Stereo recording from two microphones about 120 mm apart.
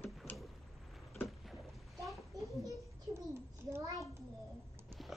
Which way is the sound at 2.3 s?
25° right (ahead or behind).